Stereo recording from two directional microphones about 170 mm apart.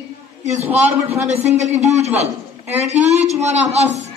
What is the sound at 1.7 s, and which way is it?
Speech, 40° right (ahead or behind).